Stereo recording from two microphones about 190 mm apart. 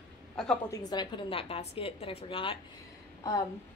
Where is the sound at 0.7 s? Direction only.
20° left (ahead or behind).